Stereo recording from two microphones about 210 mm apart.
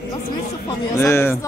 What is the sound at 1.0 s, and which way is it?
Speech, 10° left (ahead or behind).